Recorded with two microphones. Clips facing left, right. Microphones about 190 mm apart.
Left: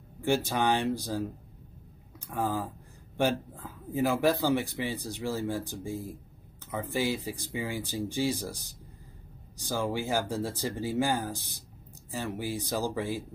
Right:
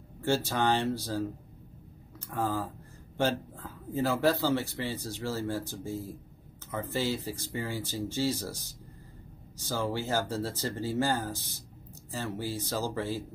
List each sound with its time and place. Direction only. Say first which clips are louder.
0.2 s speech: left 1 dB; 15° left (ahead or behind)